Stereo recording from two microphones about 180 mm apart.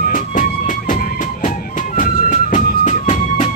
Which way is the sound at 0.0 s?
45° left (ahead or behind).